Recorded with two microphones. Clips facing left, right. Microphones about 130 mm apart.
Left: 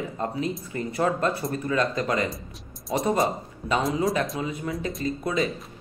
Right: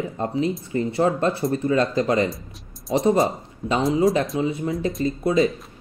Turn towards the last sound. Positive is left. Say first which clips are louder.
# right 6 dB
turn(degrees=-30)  # may be behind; listen again after turning